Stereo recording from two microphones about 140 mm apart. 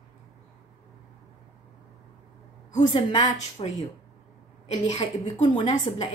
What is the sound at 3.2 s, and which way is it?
Speech, 55° left (ahead or behind).